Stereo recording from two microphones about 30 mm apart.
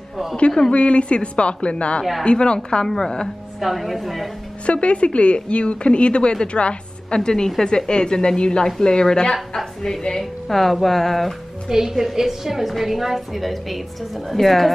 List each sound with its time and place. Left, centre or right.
0.7 s a woman's voice: left
2.8 s a woman's voice: centre
3.5 s a woman's voice: centre
4.6 s a woman's voice: left
7.2 s a woman's voice: left
8.6 s a woman's voice: centre
10.0 s a woman's voice: centre
11.7 s a woman's voice: centre